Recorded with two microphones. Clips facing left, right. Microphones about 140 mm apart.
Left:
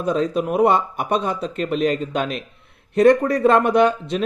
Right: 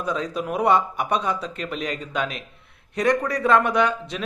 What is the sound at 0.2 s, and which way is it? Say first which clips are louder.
Speech: left 8 dB; 25° left (ahead or behind).